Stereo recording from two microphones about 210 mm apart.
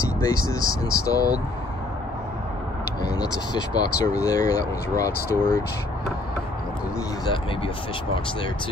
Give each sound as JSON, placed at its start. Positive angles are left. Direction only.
{"t": 0.2, "sound": "speech", "side_deg": 15}
{"t": 3.0, "sound": "speech", "side_deg": 20}